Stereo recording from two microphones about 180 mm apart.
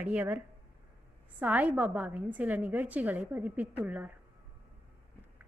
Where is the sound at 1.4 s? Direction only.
10° right (ahead or behind).